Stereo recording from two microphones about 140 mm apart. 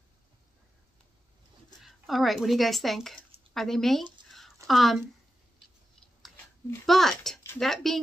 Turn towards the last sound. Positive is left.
turn(degrees=0)  # may be behind; listen again after turning